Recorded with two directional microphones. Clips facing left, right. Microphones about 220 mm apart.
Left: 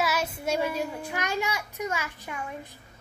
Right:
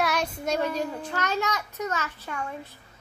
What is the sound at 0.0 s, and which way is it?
A child's voice, 5° left (ahead or behind).